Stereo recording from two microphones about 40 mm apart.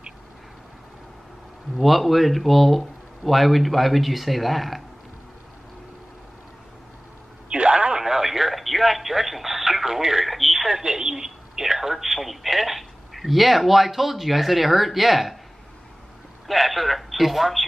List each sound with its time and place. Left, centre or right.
1.8 s speech: centre
7.4 s radio: right
8.0 s radio: centre
10.9 s speech: centre
16.4 s speech: centre